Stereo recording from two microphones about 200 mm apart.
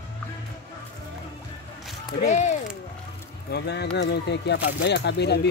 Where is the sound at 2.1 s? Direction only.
35° left (ahead or behind).